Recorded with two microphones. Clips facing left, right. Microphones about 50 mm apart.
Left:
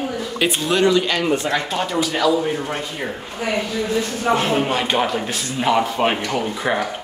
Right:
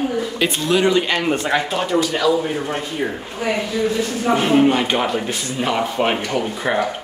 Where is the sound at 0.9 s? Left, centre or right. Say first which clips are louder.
Even; right.